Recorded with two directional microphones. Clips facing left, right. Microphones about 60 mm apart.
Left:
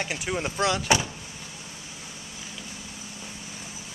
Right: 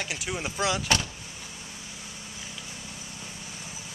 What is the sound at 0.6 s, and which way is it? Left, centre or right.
Speech, centre.